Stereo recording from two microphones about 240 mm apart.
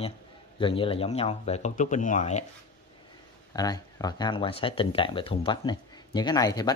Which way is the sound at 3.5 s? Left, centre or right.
Centre.